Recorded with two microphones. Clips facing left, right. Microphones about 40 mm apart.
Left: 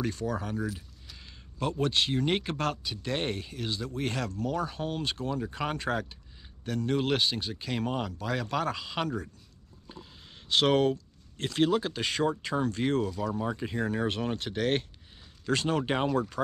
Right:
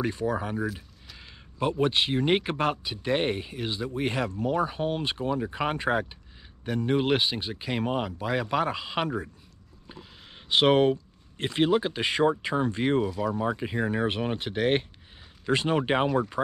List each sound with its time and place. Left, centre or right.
0.0 s speech: centre